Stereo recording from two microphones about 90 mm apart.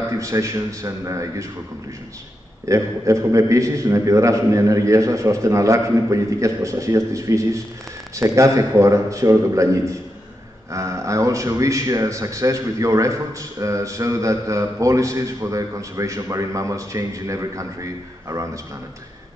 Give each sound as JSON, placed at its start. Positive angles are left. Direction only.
{"t": 0.1, "sound": "a man's voice", "side_deg": -35}
{"t": 2.7, "sound": "a man's voice", "side_deg": -35}